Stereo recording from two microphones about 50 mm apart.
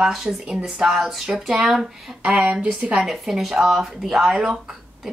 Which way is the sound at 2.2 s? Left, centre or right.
Right.